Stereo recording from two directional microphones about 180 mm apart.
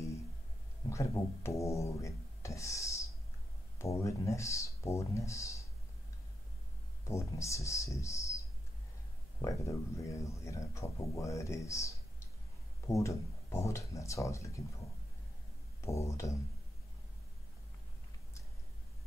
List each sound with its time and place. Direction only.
0.8 s speech: 15° left (ahead or behind)
7.1 s speech: 15° left (ahead or behind)
9.4 s speech: 15° left (ahead or behind)
15.8 s speech: 15° left (ahead or behind)